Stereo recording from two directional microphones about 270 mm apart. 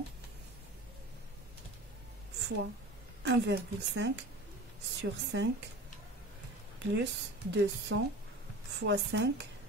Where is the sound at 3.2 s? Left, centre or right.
Right.